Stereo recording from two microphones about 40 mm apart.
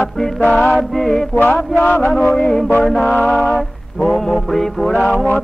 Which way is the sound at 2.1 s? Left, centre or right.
Centre.